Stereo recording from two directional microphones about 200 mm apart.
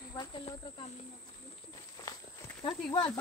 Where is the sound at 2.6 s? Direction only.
25° left (ahead or behind).